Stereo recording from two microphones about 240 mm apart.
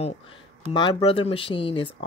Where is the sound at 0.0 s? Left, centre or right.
Left.